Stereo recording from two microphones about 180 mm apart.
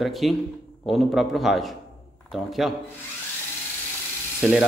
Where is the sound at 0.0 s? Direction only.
Centre (ahead or behind).